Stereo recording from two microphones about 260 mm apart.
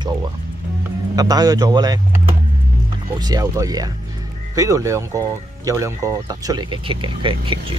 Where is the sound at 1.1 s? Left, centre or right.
Centre.